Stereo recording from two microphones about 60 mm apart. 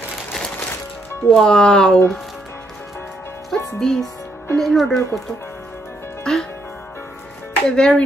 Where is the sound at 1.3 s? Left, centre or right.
Centre.